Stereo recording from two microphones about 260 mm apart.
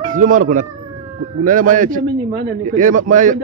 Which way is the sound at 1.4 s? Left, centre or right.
Right.